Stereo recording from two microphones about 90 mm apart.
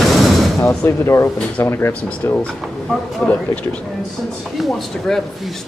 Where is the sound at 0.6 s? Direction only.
30° left (ahead or behind).